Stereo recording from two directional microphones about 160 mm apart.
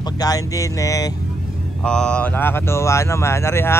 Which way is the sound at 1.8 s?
5° left (ahead or behind).